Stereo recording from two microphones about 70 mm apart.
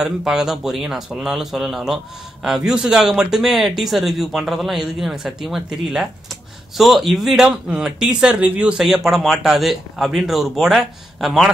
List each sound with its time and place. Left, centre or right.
0.0 s speech: centre
8.8 s speech: centre